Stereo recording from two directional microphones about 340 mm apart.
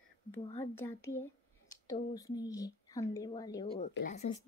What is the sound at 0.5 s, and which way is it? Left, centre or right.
A child's voice, centre.